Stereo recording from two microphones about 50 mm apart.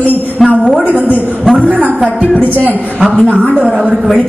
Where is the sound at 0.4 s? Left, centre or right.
Centre.